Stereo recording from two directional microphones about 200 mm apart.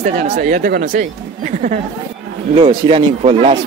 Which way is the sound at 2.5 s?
25° right (ahead or behind).